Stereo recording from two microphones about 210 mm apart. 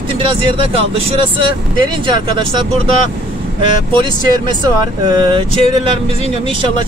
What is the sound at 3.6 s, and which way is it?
Speech, 25° right (ahead or behind).